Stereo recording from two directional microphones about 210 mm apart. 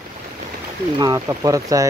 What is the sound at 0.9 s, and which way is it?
Speech, 15° right (ahead or behind).